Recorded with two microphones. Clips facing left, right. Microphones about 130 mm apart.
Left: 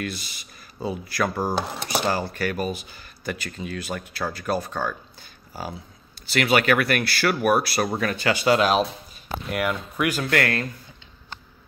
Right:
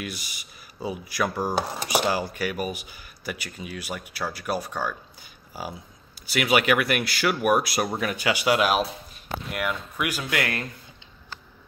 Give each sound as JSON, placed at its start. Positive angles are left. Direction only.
{"t": 0.0, "sound": "speech", "side_deg": -10}